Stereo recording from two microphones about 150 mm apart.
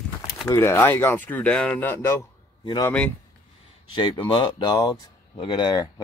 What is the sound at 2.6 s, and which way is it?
Speech, 30° left (ahead or behind).